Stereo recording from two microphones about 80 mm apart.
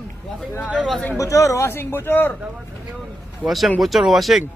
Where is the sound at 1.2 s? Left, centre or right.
Left.